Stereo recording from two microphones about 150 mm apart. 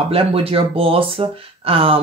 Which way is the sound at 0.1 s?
40° right (ahead or behind).